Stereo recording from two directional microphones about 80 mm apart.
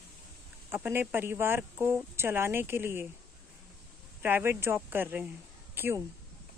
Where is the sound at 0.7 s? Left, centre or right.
Right.